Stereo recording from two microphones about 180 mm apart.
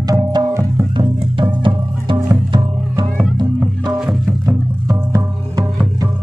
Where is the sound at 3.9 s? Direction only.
Centre (ahead or behind).